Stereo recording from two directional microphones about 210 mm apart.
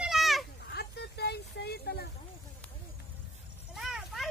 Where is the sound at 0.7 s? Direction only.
50° left (ahead or behind).